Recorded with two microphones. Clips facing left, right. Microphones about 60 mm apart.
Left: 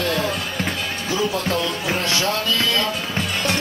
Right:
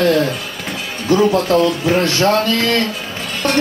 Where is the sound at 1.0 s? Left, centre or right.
Right.